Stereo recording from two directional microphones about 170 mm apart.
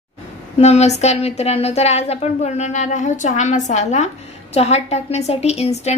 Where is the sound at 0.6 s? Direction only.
40° left (ahead or behind).